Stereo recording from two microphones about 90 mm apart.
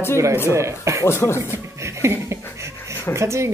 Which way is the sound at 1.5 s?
30° right (ahead or behind).